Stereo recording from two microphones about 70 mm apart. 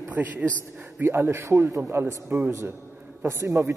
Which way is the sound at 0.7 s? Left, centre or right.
Right.